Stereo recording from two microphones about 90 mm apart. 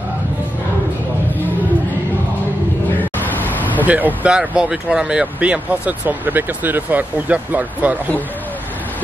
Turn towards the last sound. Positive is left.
turn(degrees=-15)  # may be behind; listen again after turning